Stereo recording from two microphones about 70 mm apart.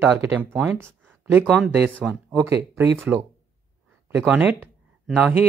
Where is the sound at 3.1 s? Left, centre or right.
Right.